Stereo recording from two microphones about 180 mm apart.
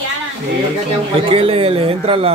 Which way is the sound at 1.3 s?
30° right (ahead or behind).